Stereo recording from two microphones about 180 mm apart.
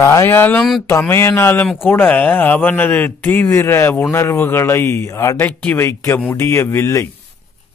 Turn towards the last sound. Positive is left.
turn(degrees=15)  # may be behind; listen again after turning